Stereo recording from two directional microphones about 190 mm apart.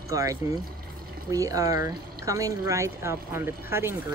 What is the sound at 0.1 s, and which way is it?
Speech, 15° right (ahead or behind).